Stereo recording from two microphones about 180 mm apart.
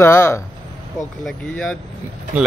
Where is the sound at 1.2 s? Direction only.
5° left (ahead or behind).